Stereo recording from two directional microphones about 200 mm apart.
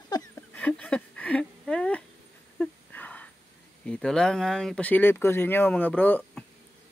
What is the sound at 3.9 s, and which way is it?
Speech, 5° left (ahead or behind).